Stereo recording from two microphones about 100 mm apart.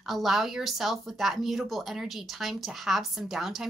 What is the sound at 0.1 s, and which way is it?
Speech, centre (ahead or behind).